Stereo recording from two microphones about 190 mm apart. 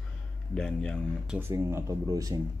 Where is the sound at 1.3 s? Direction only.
15° right (ahead or behind).